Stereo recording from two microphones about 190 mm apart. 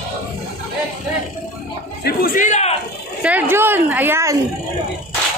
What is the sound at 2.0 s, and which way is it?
Speech, 45° left (ahead or behind).